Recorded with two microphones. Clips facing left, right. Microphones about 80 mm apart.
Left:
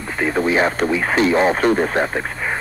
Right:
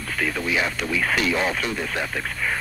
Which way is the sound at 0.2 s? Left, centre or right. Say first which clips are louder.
Left 8 dB; left.